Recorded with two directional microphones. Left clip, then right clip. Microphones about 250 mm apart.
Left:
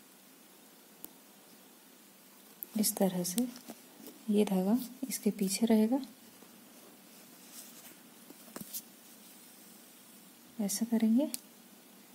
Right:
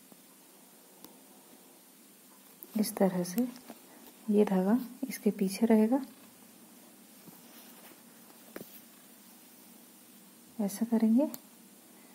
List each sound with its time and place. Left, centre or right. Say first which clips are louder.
2.7 s a woman's voice: right 3 dB; left
10.6 s speech: right 2 dB; left